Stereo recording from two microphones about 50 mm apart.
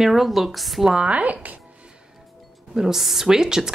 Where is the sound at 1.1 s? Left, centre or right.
Right.